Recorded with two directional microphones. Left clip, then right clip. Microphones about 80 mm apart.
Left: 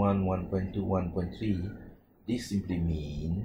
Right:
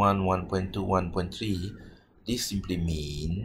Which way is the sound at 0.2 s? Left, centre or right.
Right.